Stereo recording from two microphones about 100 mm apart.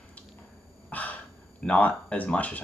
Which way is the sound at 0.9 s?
15° left (ahead or behind).